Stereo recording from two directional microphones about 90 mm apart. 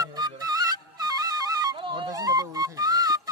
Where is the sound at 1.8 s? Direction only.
70° right (ahead or behind).